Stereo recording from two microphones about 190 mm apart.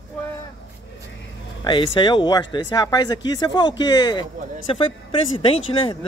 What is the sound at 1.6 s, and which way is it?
A man's voice, 25° left (ahead or behind).